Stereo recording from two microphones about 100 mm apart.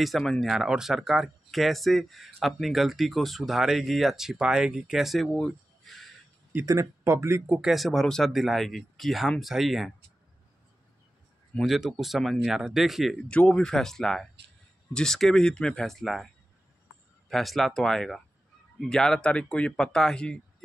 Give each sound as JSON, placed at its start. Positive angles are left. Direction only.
{"t": 0.0, "sound": "speech", "side_deg": 0}
{"t": 6.6, "sound": "speech", "side_deg": -35}
{"t": 7.4, "sound": "speech", "side_deg": -5}
{"t": 11.6, "sound": "speech", "side_deg": 0}
{"t": 13.3, "sound": "speech", "side_deg": 10}
{"t": 17.3, "sound": "speech", "side_deg": 0}